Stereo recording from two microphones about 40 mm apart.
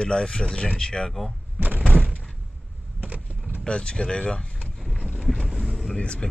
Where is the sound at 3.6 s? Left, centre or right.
Left.